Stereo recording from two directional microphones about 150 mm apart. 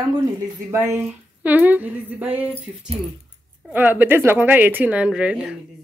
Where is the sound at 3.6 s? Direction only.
10° right (ahead or behind).